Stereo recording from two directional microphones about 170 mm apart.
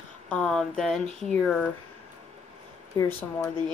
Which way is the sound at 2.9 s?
20° left (ahead or behind).